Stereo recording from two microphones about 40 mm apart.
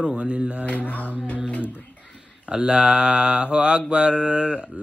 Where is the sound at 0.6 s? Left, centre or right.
Left.